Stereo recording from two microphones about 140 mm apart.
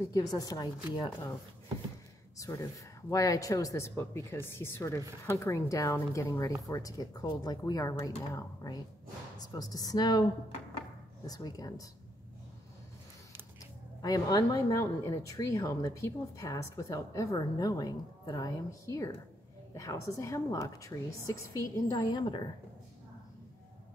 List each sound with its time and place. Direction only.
0.1 s speech: 25° left (ahead or behind)
2.3 s speech: 25° left (ahead or behind)
11.2 s speech: 25° left (ahead or behind)
14.0 s speech: 25° left (ahead or behind)